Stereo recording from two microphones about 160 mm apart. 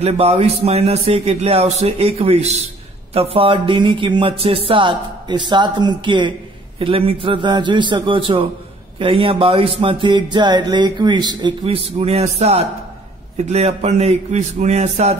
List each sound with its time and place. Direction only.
0.0 s a man's voice: 40° right (ahead or behind)